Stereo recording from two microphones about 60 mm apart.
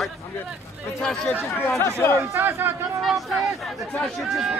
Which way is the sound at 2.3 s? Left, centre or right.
Right.